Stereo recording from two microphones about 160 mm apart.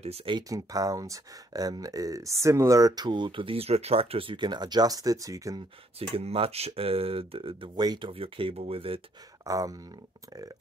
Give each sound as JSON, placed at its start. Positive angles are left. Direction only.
{"t": 0.0, "sound": "speech", "side_deg": -35}
{"t": 0.4, "sound": "speech", "side_deg": -20}
{"t": 5.9, "sound": "speech", "side_deg": -35}
{"t": 9.4, "sound": "speech", "side_deg": -20}